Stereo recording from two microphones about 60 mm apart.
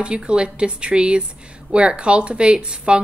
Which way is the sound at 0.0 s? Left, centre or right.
Centre.